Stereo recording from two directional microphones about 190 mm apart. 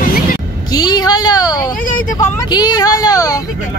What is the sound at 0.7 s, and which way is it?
Vehicle, 20° left (ahead or behind).